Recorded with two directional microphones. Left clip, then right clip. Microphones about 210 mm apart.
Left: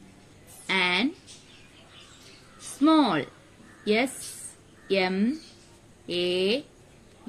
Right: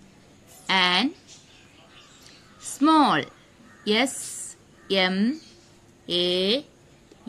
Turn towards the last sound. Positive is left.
turn(degrees=-50)  # may be behind; listen again after turning